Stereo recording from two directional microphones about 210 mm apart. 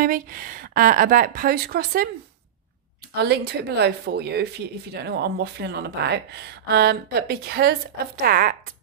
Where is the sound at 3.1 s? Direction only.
50° right (ahead or behind).